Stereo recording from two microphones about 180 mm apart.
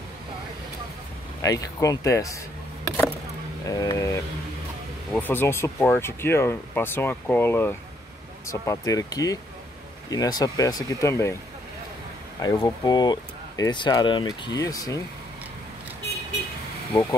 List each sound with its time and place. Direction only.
1.4 s speech: 20° left (ahead or behind)
3.6 s speech: 20° left (ahead or behind)
12.4 s speech: 20° left (ahead or behind)